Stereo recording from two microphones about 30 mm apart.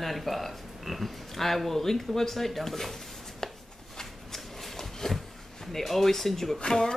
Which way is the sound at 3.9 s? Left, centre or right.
Centre.